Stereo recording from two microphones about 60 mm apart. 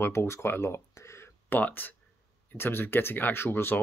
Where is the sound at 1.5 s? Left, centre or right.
Left.